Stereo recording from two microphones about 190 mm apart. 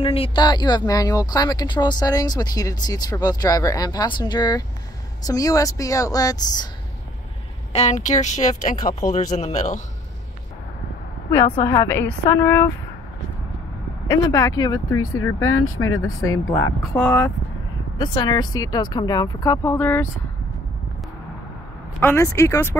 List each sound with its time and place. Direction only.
0.0 s a woman's voice: 30° left (ahead or behind)
7.7 s a woman's voice: 35° left (ahead or behind)
11.2 s a woman's voice: 15° left (ahead or behind)
14.0 s speech: 15° left (ahead or behind)
15.4 s speech: 90° left
16.4 s a woman's voice: 10° left (ahead or behind)
17.9 s speech: 25° left (ahead or behind)
22.0 s a woman's voice: 15° left (ahead or behind)